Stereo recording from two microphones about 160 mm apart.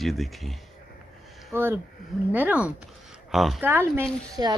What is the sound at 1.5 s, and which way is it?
Speech, 15° right (ahead or behind).